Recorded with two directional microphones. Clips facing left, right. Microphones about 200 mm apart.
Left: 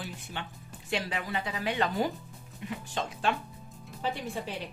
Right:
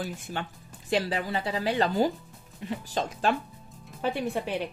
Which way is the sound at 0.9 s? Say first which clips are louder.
Right 5 dB; 35° right (ahead or behind).